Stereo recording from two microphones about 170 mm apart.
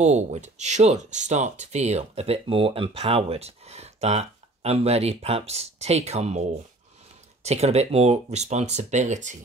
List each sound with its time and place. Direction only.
0.0 s speech: 40° right (ahead or behind)
7.4 s speech: 40° right (ahead or behind)